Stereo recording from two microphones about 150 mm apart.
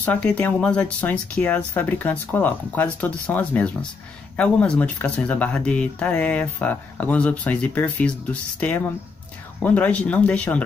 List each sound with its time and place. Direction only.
0.0 s speech: 10° left (ahead or behind)